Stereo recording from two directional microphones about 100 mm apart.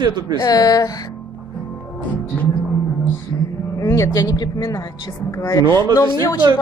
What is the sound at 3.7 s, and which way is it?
Speech, 30° left (ahead or behind).